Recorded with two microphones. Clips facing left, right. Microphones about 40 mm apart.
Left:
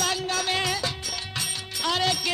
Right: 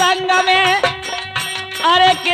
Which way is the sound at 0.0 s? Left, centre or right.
Right.